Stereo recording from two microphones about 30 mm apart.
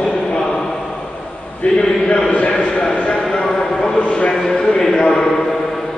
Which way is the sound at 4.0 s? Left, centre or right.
Left.